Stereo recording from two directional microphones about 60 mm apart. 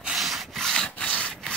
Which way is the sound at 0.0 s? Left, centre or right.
Centre.